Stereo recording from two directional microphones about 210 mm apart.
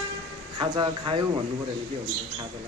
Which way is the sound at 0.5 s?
20° right (ahead or behind).